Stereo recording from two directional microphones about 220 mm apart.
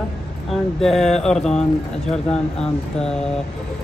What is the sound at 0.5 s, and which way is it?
Speech, centre (ahead or behind).